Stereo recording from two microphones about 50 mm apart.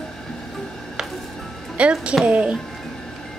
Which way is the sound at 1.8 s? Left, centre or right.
Right.